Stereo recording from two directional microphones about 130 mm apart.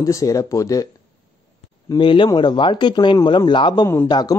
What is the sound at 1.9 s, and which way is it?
A man's voice, 40° left (ahead or behind).